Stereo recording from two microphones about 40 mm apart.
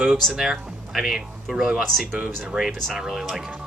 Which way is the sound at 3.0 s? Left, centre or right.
Centre.